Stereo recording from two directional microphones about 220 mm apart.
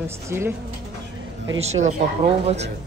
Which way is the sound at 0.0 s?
10° right (ahead or behind).